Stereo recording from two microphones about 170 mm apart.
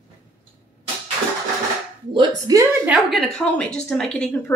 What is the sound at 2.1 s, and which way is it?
Speech, 20° right (ahead or behind).